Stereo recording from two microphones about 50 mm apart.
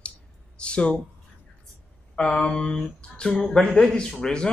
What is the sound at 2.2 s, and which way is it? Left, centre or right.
Speech, left.